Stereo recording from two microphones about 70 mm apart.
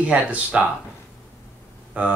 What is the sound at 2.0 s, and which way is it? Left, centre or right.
Speech, centre.